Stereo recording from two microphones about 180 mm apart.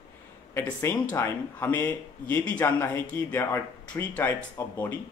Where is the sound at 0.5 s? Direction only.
10° left (ahead or behind).